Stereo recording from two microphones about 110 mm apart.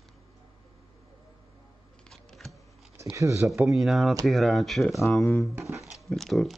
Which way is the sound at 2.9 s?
25° right (ahead or behind).